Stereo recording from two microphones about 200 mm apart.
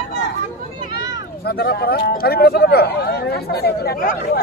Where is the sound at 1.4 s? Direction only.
50° left (ahead or behind).